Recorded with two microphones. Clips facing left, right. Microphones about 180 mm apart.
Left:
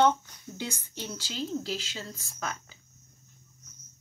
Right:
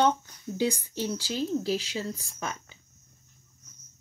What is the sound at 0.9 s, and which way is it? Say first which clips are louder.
Speech: right 8 dB; 30° right (ahead or behind).